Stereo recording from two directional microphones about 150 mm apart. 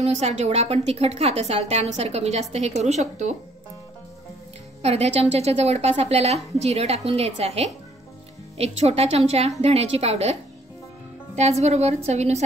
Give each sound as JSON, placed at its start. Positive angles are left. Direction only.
{"t": 0.0, "sound": "a woman's voice", "side_deg": -45}
{"t": 4.8, "sound": "a woman's voice", "side_deg": -45}
{"t": 11.6, "sound": "a woman's voice", "side_deg": -50}